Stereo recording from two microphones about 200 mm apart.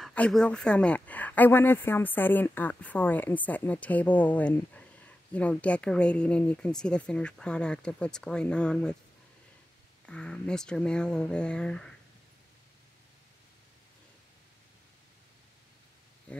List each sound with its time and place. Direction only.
0.0 s speech: 5° left (ahead or behind)
10.0 s speech: 5° left (ahead or behind)